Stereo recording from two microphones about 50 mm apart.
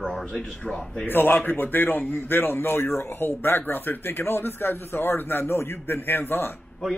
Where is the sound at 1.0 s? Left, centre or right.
Left.